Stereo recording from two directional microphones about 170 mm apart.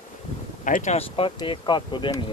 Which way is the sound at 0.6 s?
45° left (ahead or behind).